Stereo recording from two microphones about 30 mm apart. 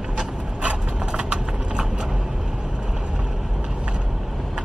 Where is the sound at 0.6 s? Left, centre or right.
Right.